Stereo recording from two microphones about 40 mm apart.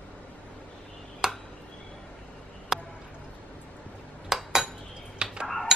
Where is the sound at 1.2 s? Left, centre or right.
Centre.